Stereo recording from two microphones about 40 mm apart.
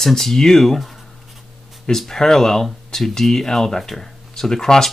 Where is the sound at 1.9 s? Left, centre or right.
Centre.